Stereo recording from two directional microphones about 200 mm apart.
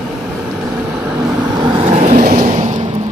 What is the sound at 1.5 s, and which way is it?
Vehicle, 25° right (ahead or behind).